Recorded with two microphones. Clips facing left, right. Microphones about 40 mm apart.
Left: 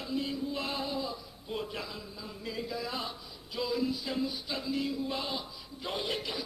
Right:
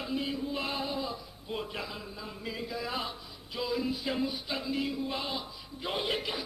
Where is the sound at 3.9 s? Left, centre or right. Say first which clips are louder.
Right 2 dB; right.